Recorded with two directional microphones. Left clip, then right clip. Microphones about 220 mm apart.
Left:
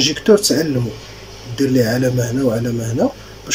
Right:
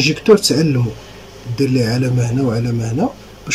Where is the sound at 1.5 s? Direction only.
20° right (ahead or behind).